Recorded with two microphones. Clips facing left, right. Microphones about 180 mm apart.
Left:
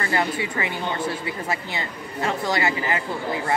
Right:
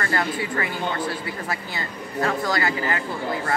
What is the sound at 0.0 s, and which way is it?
Speech, 15° left (ahead or behind).